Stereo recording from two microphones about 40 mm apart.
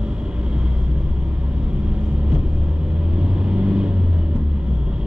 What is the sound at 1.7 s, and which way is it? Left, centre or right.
Vehicle, right.